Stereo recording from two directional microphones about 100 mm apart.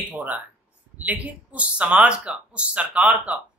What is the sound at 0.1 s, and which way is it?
Speech, 15° right (ahead or behind).